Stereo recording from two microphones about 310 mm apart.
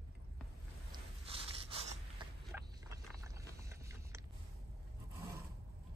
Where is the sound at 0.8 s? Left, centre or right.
Centre.